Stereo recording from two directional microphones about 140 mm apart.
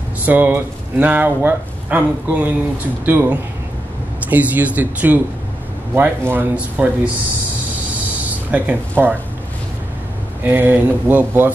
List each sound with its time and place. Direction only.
0.2 s speech: 15° right (ahead or behind)
8.5 s speech: 10° right (ahead or behind)
10.4 s speech: 15° right (ahead or behind)